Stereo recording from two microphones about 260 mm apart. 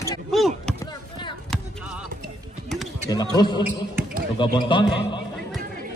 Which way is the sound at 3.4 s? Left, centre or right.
Centre.